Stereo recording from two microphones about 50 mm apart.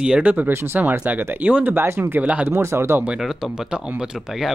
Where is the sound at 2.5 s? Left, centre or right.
Right.